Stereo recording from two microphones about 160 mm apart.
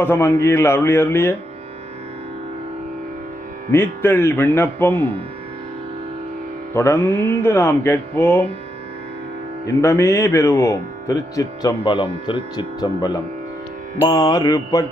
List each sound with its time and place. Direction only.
0.0 s music: 15° left (ahead or behind)
3.7 s music: 15° left (ahead or behind)
6.7 s music: 15° left (ahead or behind)
9.7 s speech: 20° left (ahead or behind)